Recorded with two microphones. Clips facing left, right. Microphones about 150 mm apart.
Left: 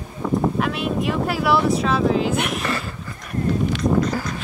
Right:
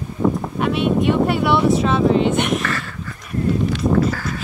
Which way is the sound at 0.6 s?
Centre (ahead or behind).